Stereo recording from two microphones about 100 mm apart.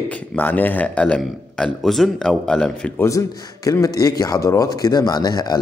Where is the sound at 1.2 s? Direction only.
Centre (ahead or behind).